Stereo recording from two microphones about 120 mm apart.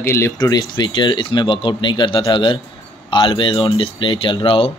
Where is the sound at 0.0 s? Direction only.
20° left (ahead or behind).